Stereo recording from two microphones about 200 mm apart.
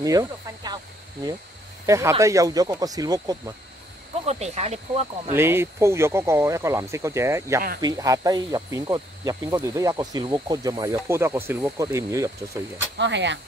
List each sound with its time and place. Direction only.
0.0 s a sound: 15° right (ahead or behind)
1.9 s speech: 15° right (ahead or behind)
4.3 s speech: 35° right (ahead or behind)
5.3 s speech: 10° right (ahead or behind)
12.9 s speech: 60° right (ahead or behind)